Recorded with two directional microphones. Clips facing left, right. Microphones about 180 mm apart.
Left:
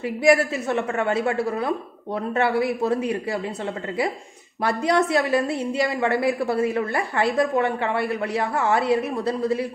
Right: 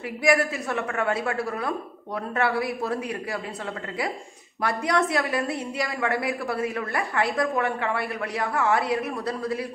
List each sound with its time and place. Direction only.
0.2 s a woman's voice: 25° left (ahead or behind)
4.6 s a woman's voice: 25° left (ahead or behind)